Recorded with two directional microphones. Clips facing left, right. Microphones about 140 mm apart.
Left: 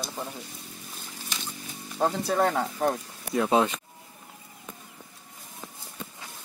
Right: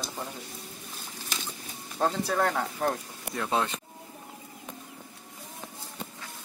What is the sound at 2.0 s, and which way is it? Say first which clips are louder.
Speech: left 2 dB; 15° left (ahead or behind).